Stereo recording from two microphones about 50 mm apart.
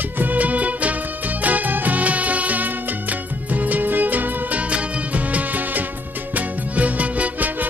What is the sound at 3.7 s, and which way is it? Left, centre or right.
Music, right.